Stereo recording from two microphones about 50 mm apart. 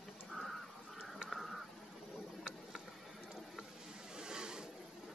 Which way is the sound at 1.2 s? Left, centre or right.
Centre.